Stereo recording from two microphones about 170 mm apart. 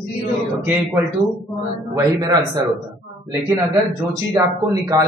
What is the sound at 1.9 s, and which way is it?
Speech, 20° right (ahead or behind).